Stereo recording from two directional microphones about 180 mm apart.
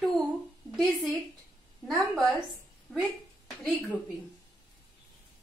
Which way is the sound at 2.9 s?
Centre (ahead or behind).